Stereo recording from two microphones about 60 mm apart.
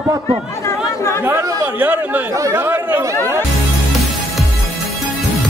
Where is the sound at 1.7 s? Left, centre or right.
Right.